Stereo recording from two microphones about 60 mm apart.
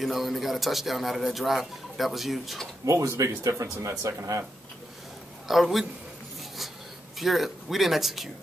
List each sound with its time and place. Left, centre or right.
0.0 s speech: centre
2.8 s speech: right
4.2 s speech: right
5.5 s speech: centre
7.2 s speech: centre